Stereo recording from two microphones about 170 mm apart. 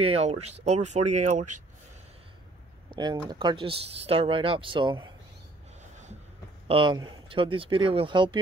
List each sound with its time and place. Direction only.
0.0 s speech: 35° right (ahead or behind)
3.0 s speech: 25° right (ahead or behind)
5.8 s a sound: 45° right (ahead or behind)
6.7 s speech: 30° right (ahead or behind)